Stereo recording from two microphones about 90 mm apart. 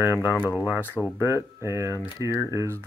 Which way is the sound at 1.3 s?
30° right (ahead or behind).